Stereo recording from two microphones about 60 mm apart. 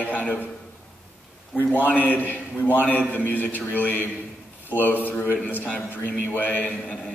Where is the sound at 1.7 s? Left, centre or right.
Left.